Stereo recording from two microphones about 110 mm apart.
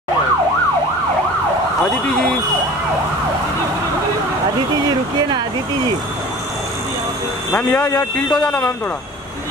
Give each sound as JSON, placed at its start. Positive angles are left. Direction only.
{"t": 7.5, "sound": "speech", "side_deg": 15}